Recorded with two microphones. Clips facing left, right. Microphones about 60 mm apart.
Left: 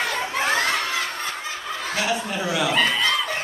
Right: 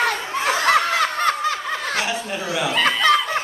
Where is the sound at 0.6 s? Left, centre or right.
Right.